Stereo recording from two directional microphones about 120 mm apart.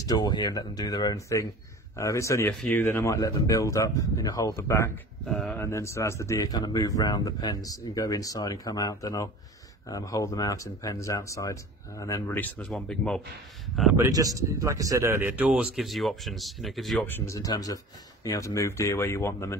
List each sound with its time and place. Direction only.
0.0 s speech: 35° left (ahead or behind)
5.2 s speech: 5° left (ahead or behind)
5.6 s speech: 25° left (ahead or behind)
12.4 s speech: 10° left (ahead or behind)
13.9 s speech: 30° right (ahead or behind); by 17.0 s centre (ahead or behind)
17.0 s speech: 15° left (ahead or behind)
17.4 s speech: 30° left (ahead or behind)